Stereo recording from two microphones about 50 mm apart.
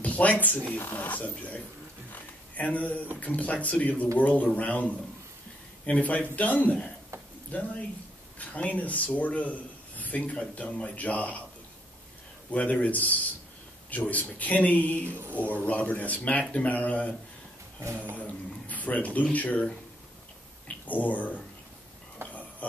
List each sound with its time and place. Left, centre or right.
0.0 s a man's voice: left
2.1 s a sound: left
3.2 s a man's voice: left
12.4 s a man's voice: left
15.1 s speech: right
15.4 s a man's voice: left
18.1 s a man's voice: left
22.2 s a sound: right
22.6 s a sound: left